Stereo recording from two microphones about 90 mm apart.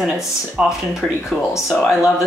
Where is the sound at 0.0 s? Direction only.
5° right (ahead or behind).